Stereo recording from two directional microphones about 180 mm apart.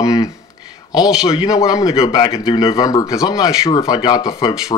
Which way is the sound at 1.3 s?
20° left (ahead or behind).